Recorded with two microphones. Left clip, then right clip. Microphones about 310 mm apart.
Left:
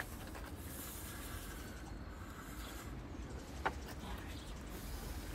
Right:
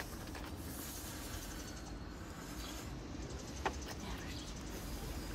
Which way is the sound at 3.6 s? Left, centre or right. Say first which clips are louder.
Even; centre.